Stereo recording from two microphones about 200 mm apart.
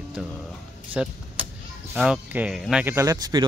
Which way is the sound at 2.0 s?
5° right (ahead or behind).